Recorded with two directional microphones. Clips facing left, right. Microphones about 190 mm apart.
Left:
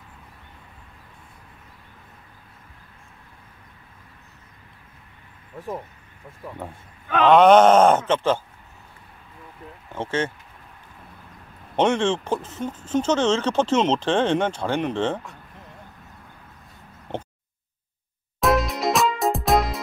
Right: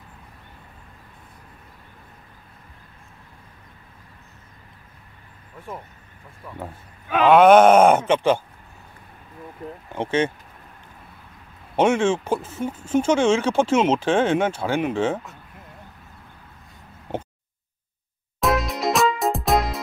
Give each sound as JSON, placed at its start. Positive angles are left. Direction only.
{"t": 6.6, "sound": "speech", "side_deg": -10}
{"t": 9.6, "sound": "speech", "side_deg": -40}
{"t": 9.9, "sound": "speech", "side_deg": -15}
{"t": 11.7, "sound": "speech", "side_deg": -10}
{"t": 18.4, "sound": "music", "side_deg": 0}